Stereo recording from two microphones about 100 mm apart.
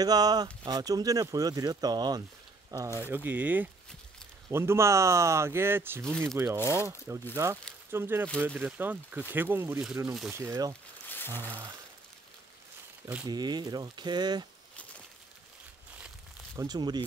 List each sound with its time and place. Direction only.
0.0 s speech: 40° right (ahead or behind)
3.0 s speech: 20° right (ahead or behind)
11.1 s a sound: 20° left (ahead or behind)
13.3 s speech: 45° right (ahead or behind)
16.5 s speech: 40° right (ahead or behind)